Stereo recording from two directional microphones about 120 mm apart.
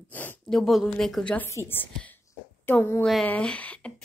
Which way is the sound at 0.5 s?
Centre (ahead or behind).